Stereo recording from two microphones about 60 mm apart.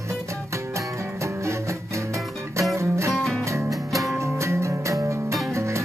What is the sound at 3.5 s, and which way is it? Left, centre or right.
Music, right.